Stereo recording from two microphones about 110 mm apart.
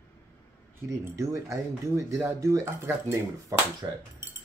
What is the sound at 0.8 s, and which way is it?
Speech, 30° right (ahead or behind).